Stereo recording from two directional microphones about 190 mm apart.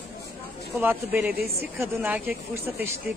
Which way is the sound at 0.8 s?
10° right (ahead or behind).